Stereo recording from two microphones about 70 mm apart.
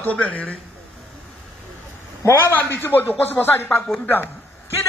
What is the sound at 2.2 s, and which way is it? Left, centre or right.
A man's voice, left.